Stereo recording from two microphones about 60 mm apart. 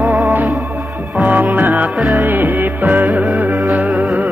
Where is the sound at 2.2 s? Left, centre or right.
Right.